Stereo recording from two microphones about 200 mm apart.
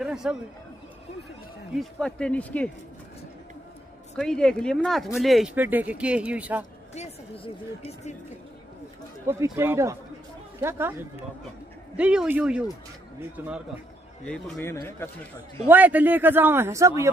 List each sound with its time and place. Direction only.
0.0 s a sound: 5° right (ahead or behind)
1.7 s speech: centre (ahead or behind)
4.2 s speech: 5° left (ahead or behind)
6.9 s a sound: 35° left (ahead or behind)
9.2 s a man's voice: 15° right (ahead or behind)
14.2 s a man's voice: 5° left (ahead or behind)
15.7 s a man's voice: 10° right (ahead or behind)